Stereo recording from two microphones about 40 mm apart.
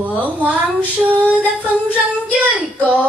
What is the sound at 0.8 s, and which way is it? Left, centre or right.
Female singing, right.